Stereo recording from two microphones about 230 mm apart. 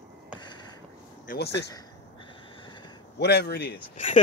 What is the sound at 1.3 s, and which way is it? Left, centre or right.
Speech, left.